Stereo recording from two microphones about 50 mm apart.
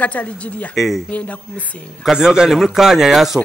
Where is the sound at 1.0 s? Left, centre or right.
Left.